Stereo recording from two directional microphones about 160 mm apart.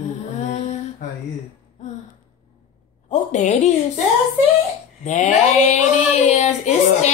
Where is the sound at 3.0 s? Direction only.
50° left (ahead or behind).